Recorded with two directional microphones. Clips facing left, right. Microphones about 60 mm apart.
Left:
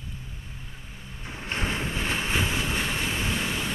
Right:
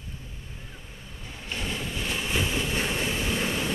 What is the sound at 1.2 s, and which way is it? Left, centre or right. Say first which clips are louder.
Vehicle: left 4 dB; left.